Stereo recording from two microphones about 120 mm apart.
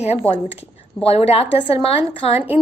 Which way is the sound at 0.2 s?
15° left (ahead or behind).